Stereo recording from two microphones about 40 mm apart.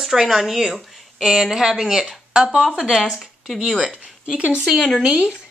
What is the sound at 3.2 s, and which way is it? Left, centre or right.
Speech, centre.